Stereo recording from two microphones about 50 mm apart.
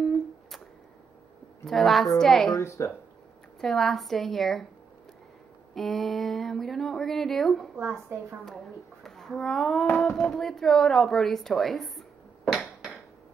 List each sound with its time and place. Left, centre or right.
0.0 s a sound: centre
1.7 s speech: centre
2.6 s speech: left
3.6 s speech: centre
5.8 s speech: centre
9.9 s a sound: centre
10.3 s speech: centre